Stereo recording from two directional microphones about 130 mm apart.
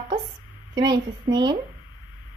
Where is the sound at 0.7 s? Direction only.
35° right (ahead or behind).